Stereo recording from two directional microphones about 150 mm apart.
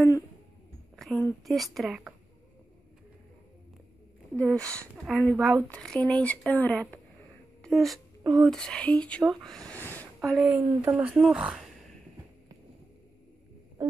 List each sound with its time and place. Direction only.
0.9 s a sound: centre (ahead or behind)
1.4 s a woman's voice: centre (ahead or behind)
4.4 s a woman's voice: 5° left (ahead or behind)
8.2 s speech: 25° right (ahead or behind)
8.5 s speech: 5° left (ahead or behind)
10.2 s a woman's voice: 5° right (ahead or behind)